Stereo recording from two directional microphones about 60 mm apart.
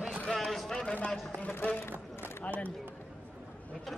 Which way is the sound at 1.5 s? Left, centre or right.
Left.